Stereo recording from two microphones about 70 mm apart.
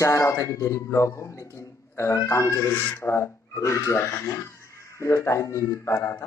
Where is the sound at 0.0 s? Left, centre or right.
Left.